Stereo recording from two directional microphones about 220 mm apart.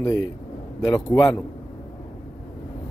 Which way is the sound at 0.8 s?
15° left (ahead or behind).